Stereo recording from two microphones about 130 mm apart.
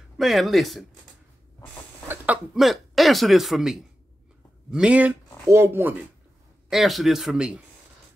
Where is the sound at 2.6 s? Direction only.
Centre (ahead or behind); by 5.9 s 15° right (ahead or behind).